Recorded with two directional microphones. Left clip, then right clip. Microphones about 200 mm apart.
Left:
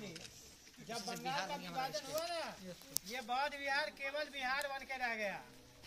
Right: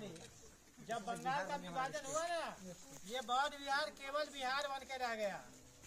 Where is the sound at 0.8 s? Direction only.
25° left (ahead or behind).